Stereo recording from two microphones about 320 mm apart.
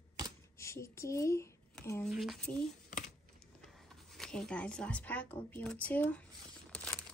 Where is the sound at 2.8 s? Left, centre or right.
Left.